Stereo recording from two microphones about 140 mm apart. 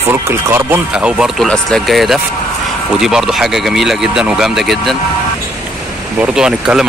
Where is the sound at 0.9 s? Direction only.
5° right (ahead or behind).